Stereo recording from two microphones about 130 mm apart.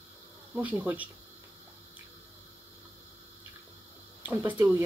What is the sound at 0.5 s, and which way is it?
Speech, 15° right (ahead or behind).